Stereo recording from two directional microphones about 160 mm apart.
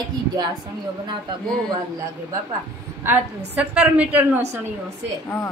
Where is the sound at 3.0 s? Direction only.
10° right (ahead or behind).